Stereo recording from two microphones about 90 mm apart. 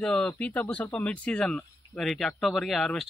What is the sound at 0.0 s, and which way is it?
Speech, 10° left (ahead or behind).